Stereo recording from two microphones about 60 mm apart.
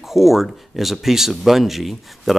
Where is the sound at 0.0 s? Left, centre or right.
Centre.